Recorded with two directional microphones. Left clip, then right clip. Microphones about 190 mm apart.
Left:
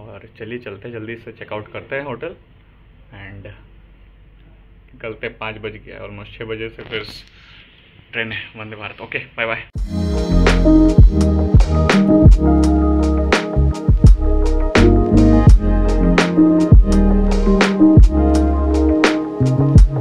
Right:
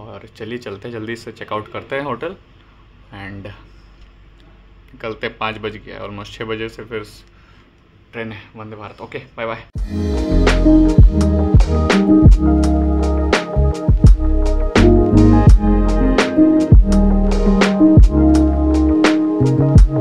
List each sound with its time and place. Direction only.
0.0 s speech: 30° right (ahead or behind); by 3.5 s 45° right (ahead or behind)
4.9 s speech: 40° right (ahead or behind)
8.1 s a man's voice: 20° right (ahead or behind)
9.8 s music: centre (ahead or behind)